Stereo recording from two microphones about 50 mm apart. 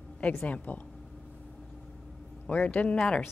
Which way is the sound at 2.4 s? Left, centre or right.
Left.